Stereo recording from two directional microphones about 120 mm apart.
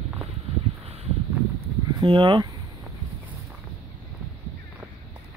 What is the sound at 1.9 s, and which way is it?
Speech, 40° right (ahead or behind).